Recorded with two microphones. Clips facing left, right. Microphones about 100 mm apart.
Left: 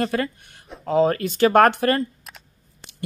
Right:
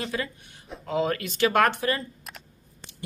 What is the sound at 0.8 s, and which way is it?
Speech, 35° left (ahead or behind).